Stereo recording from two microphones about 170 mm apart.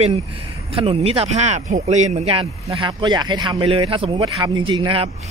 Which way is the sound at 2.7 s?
25° right (ahead or behind).